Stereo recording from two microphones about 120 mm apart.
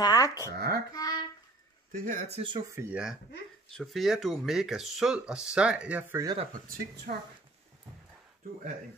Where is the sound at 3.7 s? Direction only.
Centre (ahead or behind); by 6.2 s 15° right (ahead or behind).